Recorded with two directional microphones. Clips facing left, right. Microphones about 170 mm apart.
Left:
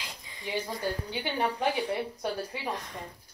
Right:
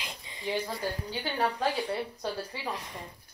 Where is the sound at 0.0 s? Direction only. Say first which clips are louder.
Right 2 dB; 25° right (ahead or behind).